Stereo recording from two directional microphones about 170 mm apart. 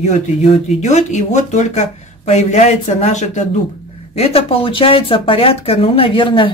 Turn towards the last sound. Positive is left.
turn(degrees=30)  # may be behind; listen again after turning